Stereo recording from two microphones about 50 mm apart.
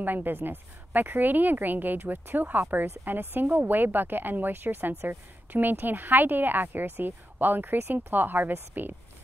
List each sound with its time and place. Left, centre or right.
0.0 s speech: right